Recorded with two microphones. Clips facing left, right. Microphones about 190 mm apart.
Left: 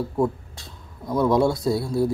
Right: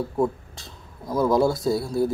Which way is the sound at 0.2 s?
Centre (ahead or behind).